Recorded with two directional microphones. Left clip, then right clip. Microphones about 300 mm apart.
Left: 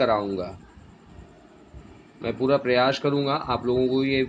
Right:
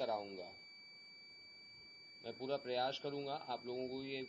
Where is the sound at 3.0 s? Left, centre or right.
Right.